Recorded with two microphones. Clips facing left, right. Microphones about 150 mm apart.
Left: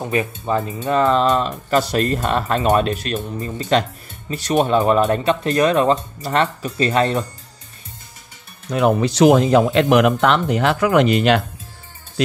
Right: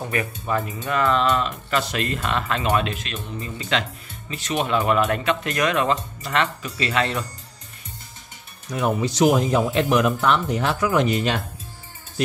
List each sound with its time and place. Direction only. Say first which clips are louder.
0.0 s speech: left 5 dB; 25° left (ahead or behind); by 7.2 s 40° left (ahead or behind)
8.6 s speech: left 6 dB; 70° left (ahead or behind)